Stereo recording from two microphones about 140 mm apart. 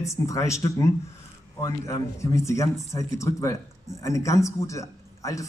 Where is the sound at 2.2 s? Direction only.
20° left (ahead or behind).